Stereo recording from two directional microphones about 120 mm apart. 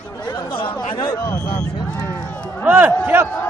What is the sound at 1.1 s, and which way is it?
Speech, 20° left (ahead or behind).